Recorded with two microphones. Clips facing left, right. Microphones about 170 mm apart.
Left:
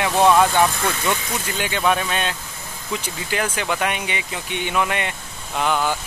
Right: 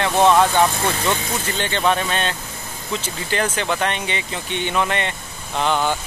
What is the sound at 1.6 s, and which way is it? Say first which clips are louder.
Speech: even; 10° left (ahead or behind).